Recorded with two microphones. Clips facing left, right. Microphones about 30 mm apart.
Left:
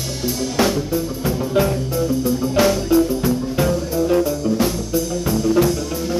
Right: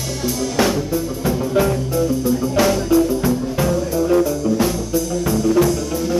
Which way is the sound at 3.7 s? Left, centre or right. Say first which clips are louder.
Right 3 dB; left.